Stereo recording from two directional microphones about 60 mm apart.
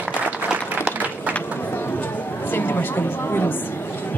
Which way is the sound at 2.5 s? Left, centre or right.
Left.